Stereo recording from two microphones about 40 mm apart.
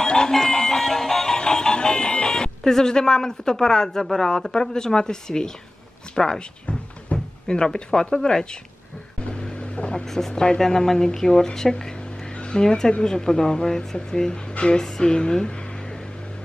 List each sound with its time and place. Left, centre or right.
0.0 s a sound: centre
0.3 s music: centre
6.1 s speech: centre
6.6 s a sound: left
9.2 s vehicle: left
10.0 s speech: centre
14.6 s music: centre